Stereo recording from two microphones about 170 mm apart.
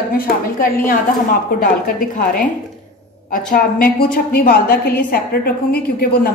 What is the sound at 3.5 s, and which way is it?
A woman's voice, 60° left (ahead or behind).